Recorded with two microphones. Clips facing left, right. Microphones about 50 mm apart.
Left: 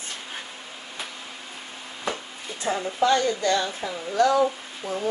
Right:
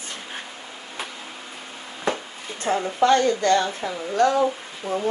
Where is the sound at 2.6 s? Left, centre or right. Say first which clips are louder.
Right 3 dB; right.